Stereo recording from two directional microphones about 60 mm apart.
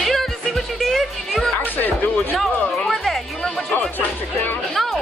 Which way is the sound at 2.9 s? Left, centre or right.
Centre.